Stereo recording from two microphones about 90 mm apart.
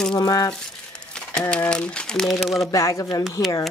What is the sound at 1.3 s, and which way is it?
Speech, 10° left (ahead or behind).